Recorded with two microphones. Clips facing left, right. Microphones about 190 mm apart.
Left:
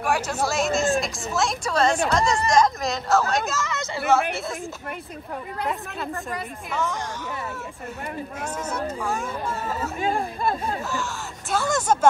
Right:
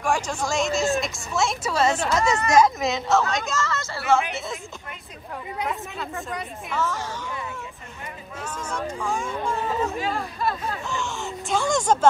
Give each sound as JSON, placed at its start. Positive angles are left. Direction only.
{"t": 0.0, "sound": "speech", "side_deg": 5}
{"t": 3.6, "sound": "a woman's voice", "side_deg": 15}
{"t": 5.6, "sound": "speech", "side_deg": 0}
{"t": 9.0, "sound": "speech", "side_deg": 5}
{"t": 9.9, "sound": "speech", "side_deg": 50}
{"t": 11.5, "sound": "speech", "side_deg": 5}